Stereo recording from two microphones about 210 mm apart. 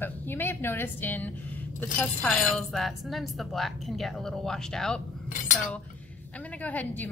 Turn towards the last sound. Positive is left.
turn(degrees=10)  # may be behind; listen again after turning